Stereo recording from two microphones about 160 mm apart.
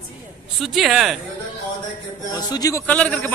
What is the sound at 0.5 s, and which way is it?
Speech, centre (ahead or behind).